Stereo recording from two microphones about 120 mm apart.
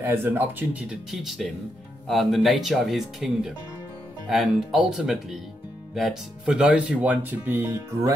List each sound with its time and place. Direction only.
0.0 s speech: 20° right (ahead or behind)